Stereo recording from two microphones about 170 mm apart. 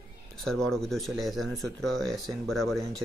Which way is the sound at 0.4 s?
5° left (ahead or behind).